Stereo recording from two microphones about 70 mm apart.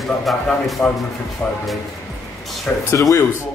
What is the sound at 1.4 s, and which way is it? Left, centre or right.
Speech, left.